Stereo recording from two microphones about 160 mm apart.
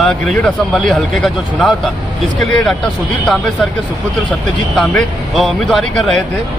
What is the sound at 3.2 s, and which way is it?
Speech, 5° left (ahead or behind).